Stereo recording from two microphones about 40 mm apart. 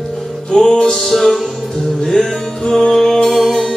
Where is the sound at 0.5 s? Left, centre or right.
Centre.